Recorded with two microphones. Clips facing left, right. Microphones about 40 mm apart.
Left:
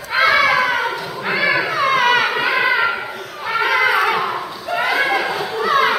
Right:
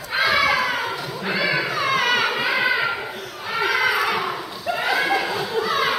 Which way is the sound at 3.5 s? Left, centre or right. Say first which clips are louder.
Left 4 dB; centre.